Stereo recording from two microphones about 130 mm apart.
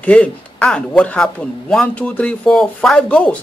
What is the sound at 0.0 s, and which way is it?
Speech, 10° left (ahead or behind).